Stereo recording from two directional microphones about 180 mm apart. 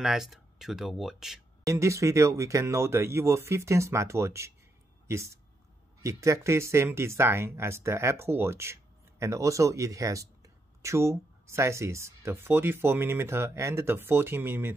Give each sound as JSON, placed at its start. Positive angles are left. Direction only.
{"t": 0.0, "sound": "speech", "side_deg": 0}
{"t": 1.7, "sound": "speech", "side_deg": -15}